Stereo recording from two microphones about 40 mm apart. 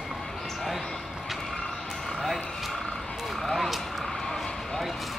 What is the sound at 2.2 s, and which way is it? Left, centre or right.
Vehicle, centre.